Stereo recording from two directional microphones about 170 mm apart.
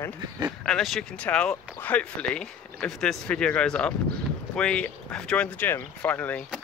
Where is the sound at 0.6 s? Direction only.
Centre (ahead or behind).